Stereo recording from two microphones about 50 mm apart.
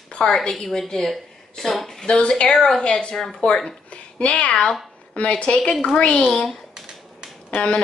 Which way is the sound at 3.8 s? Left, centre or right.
Left.